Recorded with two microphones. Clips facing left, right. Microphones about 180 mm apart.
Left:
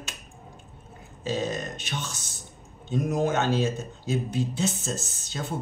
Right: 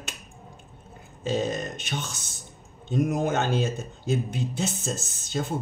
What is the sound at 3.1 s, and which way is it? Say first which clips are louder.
Speech: left 4 dB; 50° right (ahead or behind).